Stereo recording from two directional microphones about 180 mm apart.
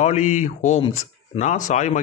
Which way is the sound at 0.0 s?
40° left (ahead or behind).